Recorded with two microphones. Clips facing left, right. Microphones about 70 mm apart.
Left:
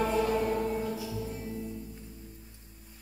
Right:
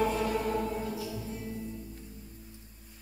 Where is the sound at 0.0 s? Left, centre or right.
Left.